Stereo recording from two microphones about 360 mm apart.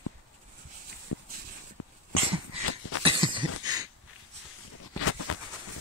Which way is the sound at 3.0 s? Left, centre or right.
Centre.